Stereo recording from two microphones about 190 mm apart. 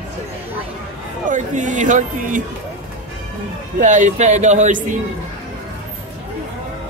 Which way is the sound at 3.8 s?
40° right (ahead or behind).